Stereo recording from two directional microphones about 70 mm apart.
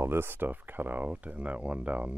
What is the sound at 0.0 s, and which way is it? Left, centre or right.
Speech, right.